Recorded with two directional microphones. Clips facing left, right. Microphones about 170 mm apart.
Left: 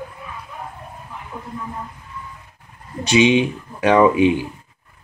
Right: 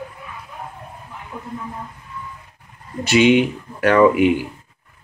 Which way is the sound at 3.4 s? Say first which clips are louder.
Right 1 dB; 15° left (ahead or behind).